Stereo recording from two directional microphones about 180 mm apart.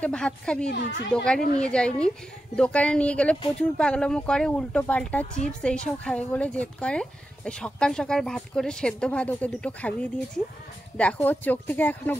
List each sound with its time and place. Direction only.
0.0 s speech: 5° left (ahead or behind)
0.7 s a woman's voice: 70° left (ahead or behind)
1.1 s speech: 5° left (ahead or behind)